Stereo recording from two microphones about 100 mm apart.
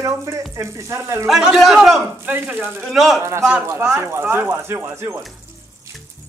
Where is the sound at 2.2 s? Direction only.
20° right (ahead or behind).